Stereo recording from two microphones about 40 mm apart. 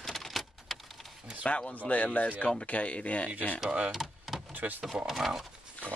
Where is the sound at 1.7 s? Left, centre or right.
Left.